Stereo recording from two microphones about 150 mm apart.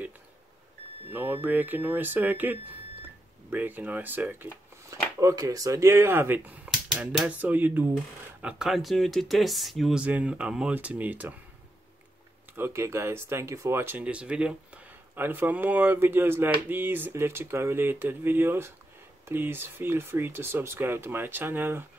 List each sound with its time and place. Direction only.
1.1 s speech: 15° right (ahead or behind)
5.2 s speech: 25° right (ahead or behind)
12.5 s speech: 15° right (ahead or behind)